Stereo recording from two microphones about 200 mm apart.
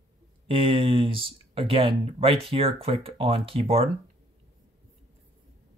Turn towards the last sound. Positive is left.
turn(degrees=-30)  # may be behind; listen again after turning